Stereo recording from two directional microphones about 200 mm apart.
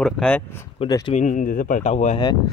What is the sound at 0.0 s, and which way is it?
Speech, 5° left (ahead or behind).